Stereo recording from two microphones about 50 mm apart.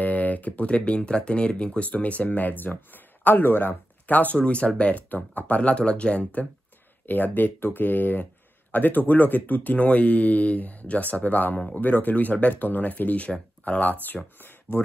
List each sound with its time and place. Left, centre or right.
0.0 s speech: left
4.1 s speech: left
7.1 s speech: left
14.0 s speech: left